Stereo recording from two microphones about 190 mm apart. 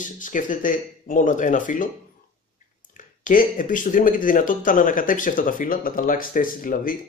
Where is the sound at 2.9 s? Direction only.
45° left (ahead or behind).